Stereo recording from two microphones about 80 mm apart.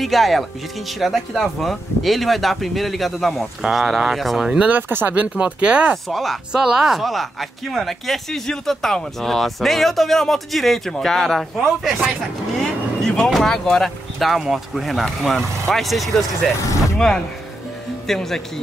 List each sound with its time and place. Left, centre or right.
0.0 s speech: centre
4.6 s speech: right
6.0 s speech: centre
18.0 s speech: centre